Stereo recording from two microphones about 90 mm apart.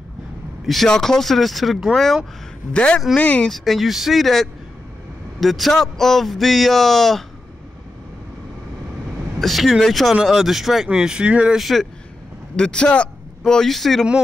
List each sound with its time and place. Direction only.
0.7 s a man's voice: 5° left (ahead or behind)
2.7 s speech: 15° left (ahead or behind)
3.4 s a man's voice: centre (ahead or behind)
9.4 s a man's voice: centre (ahead or behind)